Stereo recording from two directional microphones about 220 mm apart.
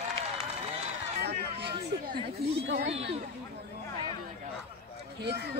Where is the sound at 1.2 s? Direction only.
50° right (ahead or behind).